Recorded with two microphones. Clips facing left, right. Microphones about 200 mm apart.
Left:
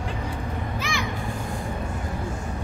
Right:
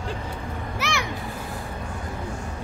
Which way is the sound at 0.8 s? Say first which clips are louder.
Right 4 dB; 75° right (ahead or behind).